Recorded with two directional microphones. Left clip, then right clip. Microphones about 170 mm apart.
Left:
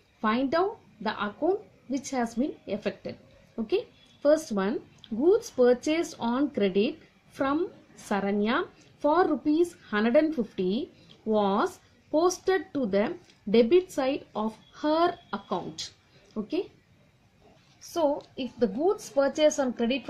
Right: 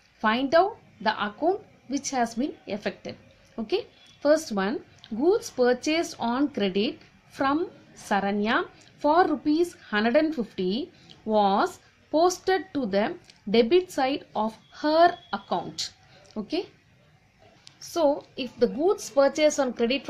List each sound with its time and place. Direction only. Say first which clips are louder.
0.2 s a woman's voice: right 5 dB; centre (ahead or behind)
16.3 s a woman's voice: even; 15° right (ahead or behind)
17.7 s a child's voice: right 3 dB; 10° right (ahead or behind)